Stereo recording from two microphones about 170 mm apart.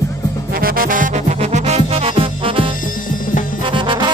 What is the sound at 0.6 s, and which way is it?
Music, 55° right (ahead or behind).